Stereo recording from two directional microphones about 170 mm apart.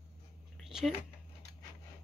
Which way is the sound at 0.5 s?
Centre (ahead or behind).